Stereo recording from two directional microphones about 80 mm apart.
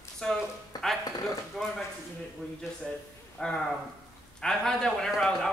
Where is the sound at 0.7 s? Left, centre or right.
Left.